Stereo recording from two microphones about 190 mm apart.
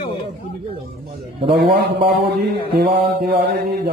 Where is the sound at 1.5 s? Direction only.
60° right (ahead or behind).